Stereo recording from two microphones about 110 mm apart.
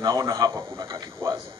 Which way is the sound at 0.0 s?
35° right (ahead or behind).